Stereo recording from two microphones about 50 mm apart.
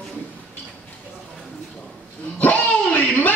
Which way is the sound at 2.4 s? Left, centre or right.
Left.